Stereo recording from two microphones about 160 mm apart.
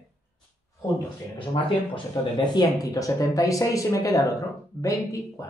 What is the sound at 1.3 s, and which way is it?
Speech, 30° left (ahead or behind).